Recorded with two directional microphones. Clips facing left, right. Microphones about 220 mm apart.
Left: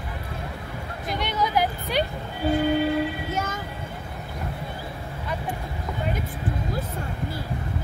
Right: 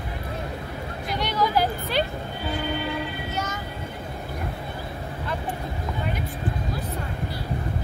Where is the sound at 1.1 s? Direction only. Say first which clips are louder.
Right 1 dB; 20° left (ahead or behind).